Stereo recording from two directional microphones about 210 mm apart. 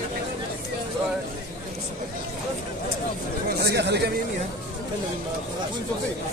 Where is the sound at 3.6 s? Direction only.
50° right (ahead or behind).